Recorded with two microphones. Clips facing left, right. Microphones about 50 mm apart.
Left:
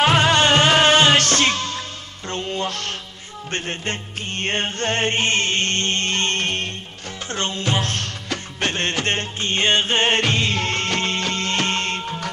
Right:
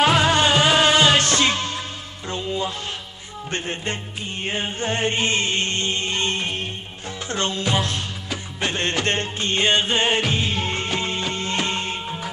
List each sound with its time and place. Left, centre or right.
0.2 s music: left
1.4 s music: centre
2.3 s music: left
4.3 s music: left
4.8 s music: left
7.3 s music: left
7.8 s music: left
10.2 s music: left
10.6 s music: left